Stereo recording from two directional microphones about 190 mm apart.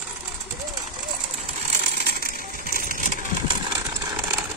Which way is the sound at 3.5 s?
20° right (ahead or behind).